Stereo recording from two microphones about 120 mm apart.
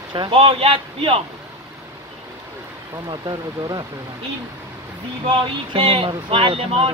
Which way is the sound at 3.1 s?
35° right (ahead or behind).